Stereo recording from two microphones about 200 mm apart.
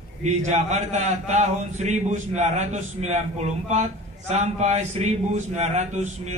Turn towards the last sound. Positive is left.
turn(degrees=-35)  # may be behind; listen again after turning